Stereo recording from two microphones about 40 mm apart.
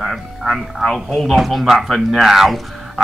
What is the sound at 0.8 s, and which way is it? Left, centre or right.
A man's voice, centre.